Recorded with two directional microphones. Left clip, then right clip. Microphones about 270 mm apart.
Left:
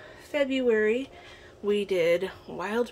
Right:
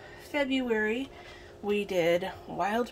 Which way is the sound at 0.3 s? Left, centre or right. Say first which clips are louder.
Left 4 dB; centre.